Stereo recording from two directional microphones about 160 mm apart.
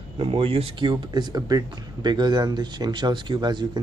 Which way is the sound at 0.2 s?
35° right (ahead or behind).